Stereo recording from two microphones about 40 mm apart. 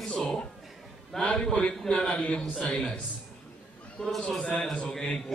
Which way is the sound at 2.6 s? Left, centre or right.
Left.